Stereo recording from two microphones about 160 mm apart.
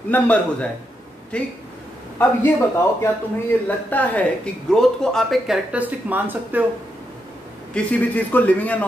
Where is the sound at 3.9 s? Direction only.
10° left (ahead or behind); by 6.6 s 10° right (ahead or behind).